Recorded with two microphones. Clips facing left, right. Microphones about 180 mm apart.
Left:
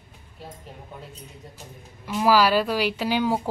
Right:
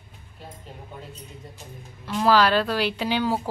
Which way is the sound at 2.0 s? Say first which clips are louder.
Even; 10° left (ahead or behind).